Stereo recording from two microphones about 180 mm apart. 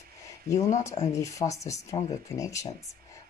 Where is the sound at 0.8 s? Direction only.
15° left (ahead or behind).